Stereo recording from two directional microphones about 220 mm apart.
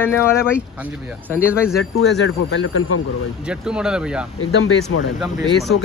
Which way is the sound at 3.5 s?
5° right (ahead or behind).